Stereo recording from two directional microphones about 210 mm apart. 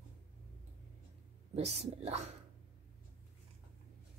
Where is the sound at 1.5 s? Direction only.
30° right (ahead or behind).